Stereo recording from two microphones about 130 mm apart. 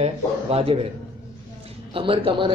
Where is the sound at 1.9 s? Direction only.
45° right (ahead or behind).